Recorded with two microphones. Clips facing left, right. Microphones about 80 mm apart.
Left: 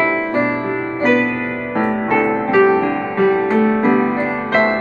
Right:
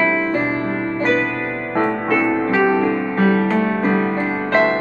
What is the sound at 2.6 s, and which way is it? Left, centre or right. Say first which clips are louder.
Music: left 6 dB; centre.